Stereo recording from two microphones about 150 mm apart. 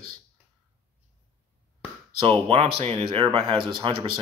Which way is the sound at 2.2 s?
35° right (ahead or behind).